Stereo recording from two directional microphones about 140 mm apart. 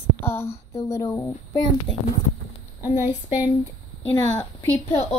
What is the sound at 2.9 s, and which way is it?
Speech, 15° right (ahead or behind).